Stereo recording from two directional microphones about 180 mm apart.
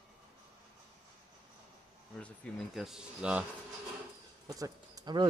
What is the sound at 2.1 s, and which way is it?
Speech, 5° left (ahead or behind).